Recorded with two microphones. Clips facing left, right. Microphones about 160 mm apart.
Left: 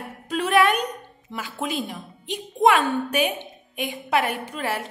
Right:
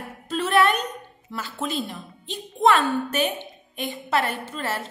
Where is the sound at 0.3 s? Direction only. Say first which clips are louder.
Left 1 dB; 10° left (ahead or behind).